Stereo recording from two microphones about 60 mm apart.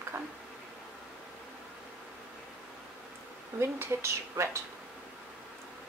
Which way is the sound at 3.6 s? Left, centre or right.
Right.